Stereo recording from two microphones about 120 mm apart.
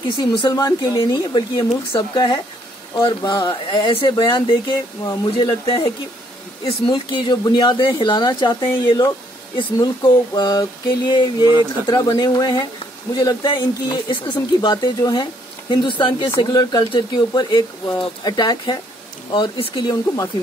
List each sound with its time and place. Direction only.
0.0 s speech: 45° left (ahead or behind)
6.9 s speech: 40° left (ahead or behind)